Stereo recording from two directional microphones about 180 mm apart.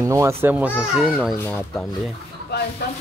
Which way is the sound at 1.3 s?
15° left (ahead or behind).